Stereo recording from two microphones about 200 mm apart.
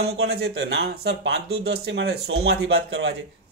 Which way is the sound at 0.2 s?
55° right (ahead or behind).